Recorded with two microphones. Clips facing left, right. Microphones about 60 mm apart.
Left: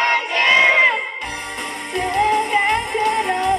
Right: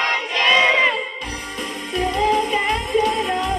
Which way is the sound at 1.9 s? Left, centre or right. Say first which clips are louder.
Left 1 dB; left.